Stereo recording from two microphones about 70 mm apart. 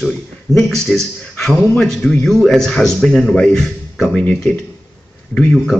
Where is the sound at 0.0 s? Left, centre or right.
Centre.